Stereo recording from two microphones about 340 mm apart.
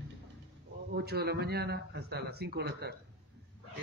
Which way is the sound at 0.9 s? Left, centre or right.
Right.